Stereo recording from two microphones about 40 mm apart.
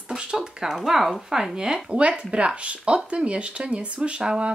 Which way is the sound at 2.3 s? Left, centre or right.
Right.